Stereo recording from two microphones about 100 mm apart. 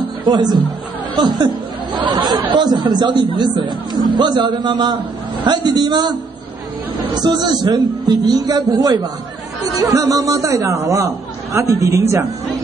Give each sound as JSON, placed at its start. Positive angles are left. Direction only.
{"t": 0.2, "sound": "a man's voice", "side_deg": -45}
{"t": 7.2, "sound": "a man's voice", "side_deg": -45}